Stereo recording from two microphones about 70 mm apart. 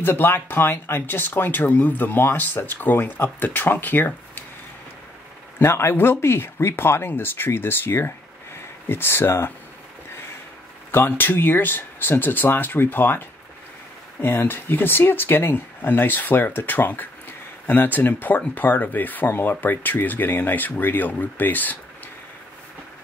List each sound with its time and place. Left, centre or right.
0.0 s speech: left
5.6 s speech: left
10.9 s speech: left
14.2 s speech: left